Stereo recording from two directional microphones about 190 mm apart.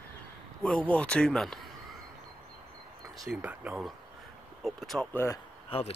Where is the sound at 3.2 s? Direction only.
5° right (ahead or behind).